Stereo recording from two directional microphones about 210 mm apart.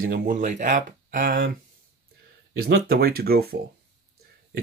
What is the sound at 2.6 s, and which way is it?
Speech, 45° right (ahead or behind).